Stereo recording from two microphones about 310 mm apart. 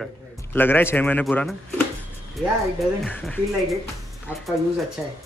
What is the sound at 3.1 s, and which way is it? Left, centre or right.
Speech, centre.